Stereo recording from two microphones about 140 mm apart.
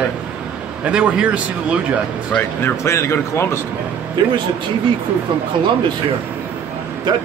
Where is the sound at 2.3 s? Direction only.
15° left (ahead or behind).